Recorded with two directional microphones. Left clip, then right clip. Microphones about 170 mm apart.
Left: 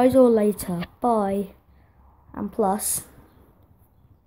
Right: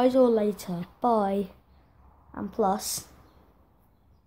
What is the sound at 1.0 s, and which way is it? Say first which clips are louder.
A woman's voice: left 2 dB; 10° left (ahead or behind).